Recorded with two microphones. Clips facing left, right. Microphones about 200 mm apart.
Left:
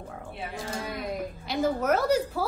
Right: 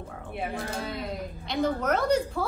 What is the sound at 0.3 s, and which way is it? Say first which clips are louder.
Speech: right 4 dB; 60° right (ahead or behind).